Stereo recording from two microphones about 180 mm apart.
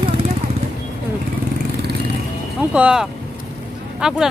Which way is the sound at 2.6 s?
5° right (ahead or behind).